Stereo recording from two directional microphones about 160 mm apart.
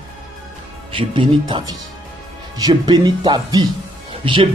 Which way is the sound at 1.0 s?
30° right (ahead or behind).